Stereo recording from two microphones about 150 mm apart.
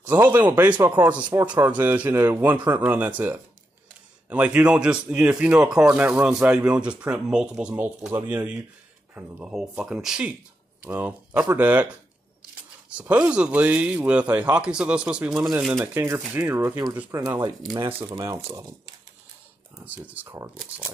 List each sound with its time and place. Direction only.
0.0 s speech: 15° right (ahead or behind)
11.4 s a sound: 10° right (ahead or behind)
12.9 s speech: 10° right (ahead or behind); by 18.8 s 25° right (ahead or behind)
19.8 s speech: 10° right (ahead or behind)